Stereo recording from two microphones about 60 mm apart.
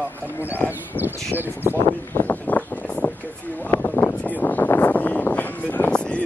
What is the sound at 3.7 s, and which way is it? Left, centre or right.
Speech, left.